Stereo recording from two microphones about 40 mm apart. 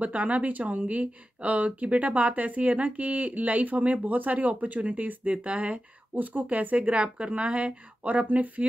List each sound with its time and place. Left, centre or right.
0.0 s speech: right
6.1 s speech: right